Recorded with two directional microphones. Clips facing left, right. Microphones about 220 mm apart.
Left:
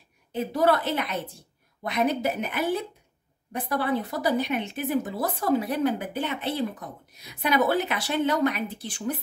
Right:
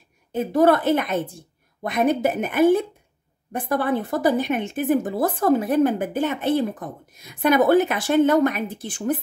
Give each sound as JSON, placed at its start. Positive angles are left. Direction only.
{"t": 0.3, "sound": "speech", "side_deg": -50}